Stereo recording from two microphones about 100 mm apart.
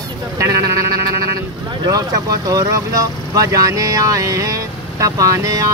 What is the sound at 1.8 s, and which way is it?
Speech, 40° right (ahead or behind).